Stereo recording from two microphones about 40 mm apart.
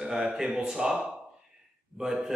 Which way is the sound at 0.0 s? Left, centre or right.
Centre.